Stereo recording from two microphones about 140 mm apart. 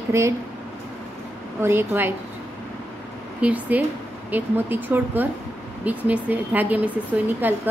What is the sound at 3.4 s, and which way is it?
Speech, 10° right (ahead or behind).